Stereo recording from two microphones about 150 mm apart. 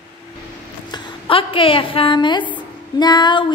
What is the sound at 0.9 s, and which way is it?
A woman's voice, 35° left (ahead or behind).